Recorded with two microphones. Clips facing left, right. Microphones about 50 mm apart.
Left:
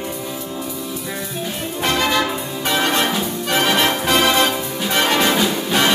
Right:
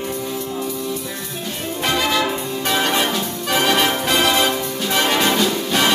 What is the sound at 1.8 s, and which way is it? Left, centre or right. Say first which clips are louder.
Music: left 1 dB; centre.